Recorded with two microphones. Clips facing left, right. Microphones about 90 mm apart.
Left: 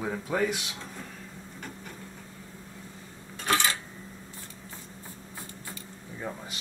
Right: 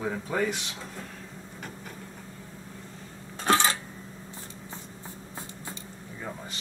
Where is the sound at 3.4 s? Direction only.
30° right (ahead or behind).